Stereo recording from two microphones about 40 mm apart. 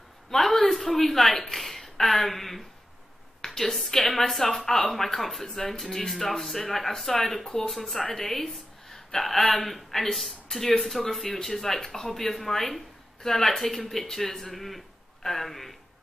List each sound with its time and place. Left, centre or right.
0.3 s speech: centre
7.4 s a woman's voice: centre